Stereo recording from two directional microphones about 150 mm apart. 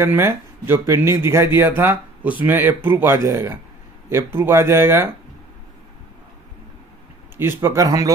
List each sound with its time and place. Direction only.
0.0 s speech: 15° right (ahead or behind)
7.3 s speech: 15° right (ahead or behind)